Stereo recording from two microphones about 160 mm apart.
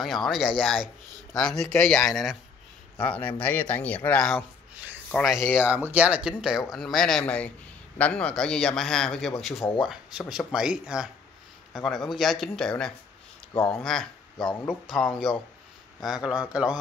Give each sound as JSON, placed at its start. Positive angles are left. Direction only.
{"t": 0.0, "sound": "a man's voice", "side_deg": 0}
{"t": 5.4, "sound": "speech", "side_deg": 10}
{"t": 5.7, "sound": "a man's voice", "side_deg": -10}
{"t": 13.5, "sound": "speech", "side_deg": 35}
{"t": 15.0, "sound": "a man's voice", "side_deg": 0}